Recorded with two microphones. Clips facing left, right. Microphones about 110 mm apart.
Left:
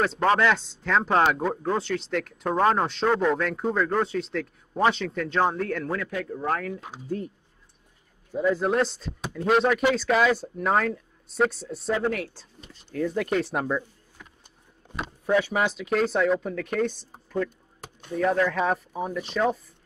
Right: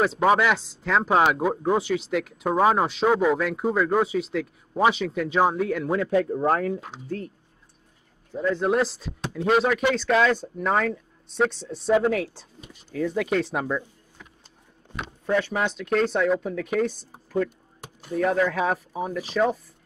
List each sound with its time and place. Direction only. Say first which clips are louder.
0.0 s speech: right 2 dB; 5° right (ahead or behind)
5.9 s speech: right 8 dB; 35° right (ahead or behind)
6.9 s speech: left 1 dB; 15° left (ahead or behind); by 12.7 s 15° right (ahead or behind)
12.9 s speech: right 1 dB; centre (ahead or behind)
15.2 s speech: left 1 dB; 5° left (ahead or behind)